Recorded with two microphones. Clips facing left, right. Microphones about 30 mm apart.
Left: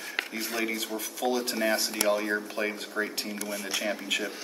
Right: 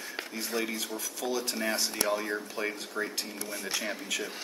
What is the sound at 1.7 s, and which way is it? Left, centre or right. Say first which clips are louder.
Speech: left 3 dB; left.